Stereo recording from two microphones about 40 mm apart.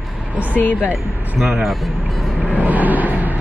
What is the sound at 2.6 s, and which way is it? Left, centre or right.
Vehicle, right.